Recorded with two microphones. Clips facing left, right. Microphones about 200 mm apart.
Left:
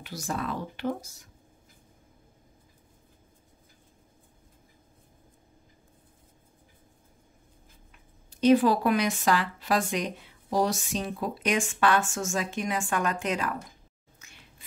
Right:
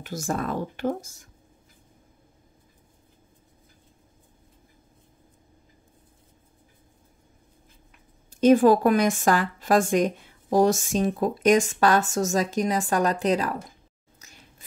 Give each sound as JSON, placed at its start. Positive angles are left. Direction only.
{"t": 0.0, "sound": "speech", "side_deg": -45}
{"t": 8.3, "sound": "speech", "side_deg": -45}
{"t": 14.2, "sound": "a sound", "side_deg": -40}